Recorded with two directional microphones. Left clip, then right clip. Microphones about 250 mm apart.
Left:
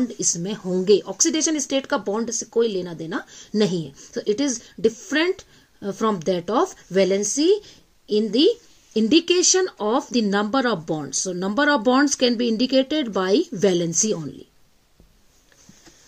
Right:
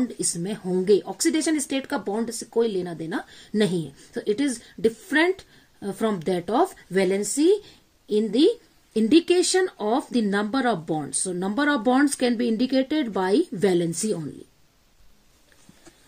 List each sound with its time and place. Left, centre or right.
0.0 s speech: centre